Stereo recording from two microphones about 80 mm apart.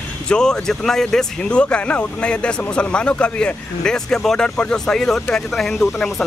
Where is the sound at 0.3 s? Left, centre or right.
Centre.